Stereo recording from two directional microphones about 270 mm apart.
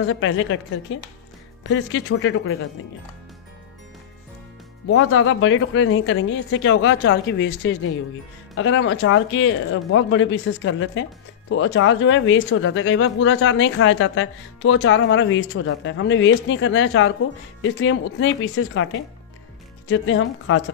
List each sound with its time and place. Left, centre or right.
0.0 s speech: left
4.9 s speech: left